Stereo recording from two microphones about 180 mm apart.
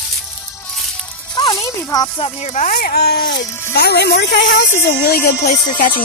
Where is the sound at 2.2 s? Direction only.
40° left (ahead or behind); by 4.7 s 60° left (ahead or behind).